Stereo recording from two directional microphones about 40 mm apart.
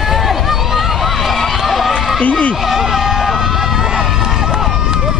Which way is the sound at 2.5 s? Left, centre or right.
Centre.